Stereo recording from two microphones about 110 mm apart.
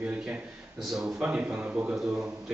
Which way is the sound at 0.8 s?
5° right (ahead or behind).